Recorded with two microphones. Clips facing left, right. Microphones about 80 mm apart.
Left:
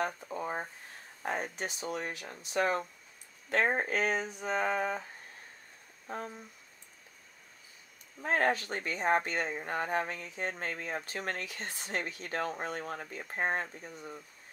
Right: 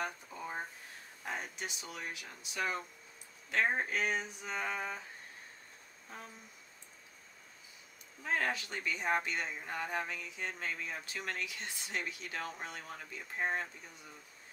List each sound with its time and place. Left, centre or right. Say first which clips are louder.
0.0 s speech: left 6 dB; left
6.0 s speech: left 10 dB; left
8.2 s speech: left 6 dB; left